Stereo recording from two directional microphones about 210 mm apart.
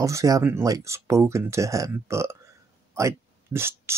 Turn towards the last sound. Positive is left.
turn(degrees=-10)  # may be behind; listen again after turning